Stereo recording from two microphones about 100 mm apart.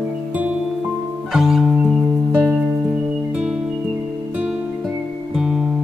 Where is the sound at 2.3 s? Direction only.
20° right (ahead or behind).